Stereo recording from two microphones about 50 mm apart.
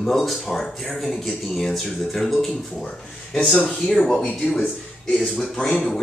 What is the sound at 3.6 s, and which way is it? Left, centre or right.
Speech, centre.